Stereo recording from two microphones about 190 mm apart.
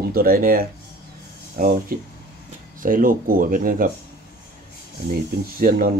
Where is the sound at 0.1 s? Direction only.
50° right (ahead or behind).